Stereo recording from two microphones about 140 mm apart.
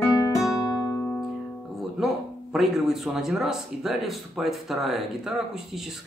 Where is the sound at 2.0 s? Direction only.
Centre (ahead or behind).